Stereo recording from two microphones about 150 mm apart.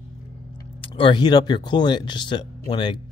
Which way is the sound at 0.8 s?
35° left (ahead or behind).